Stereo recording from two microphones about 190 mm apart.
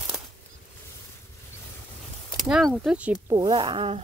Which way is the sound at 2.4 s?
Centre (ahead or behind).